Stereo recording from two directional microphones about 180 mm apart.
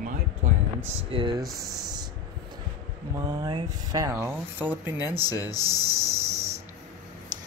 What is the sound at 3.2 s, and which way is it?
Speech, 20° right (ahead or behind).